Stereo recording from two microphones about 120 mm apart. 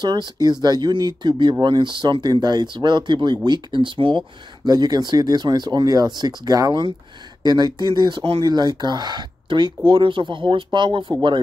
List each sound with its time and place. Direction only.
0.0 s speech: 35° right (ahead or behind)